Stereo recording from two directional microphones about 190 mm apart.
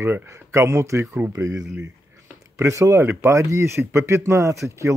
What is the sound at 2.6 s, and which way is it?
Speech, 15° right (ahead or behind).